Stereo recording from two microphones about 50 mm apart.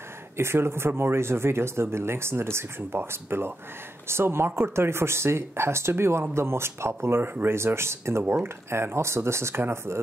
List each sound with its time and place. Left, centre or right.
0.4 s speech: right